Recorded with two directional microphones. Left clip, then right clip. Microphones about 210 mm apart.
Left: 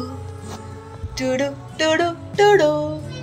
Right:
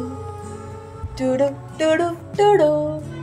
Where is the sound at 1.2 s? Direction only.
10° right (ahead or behind).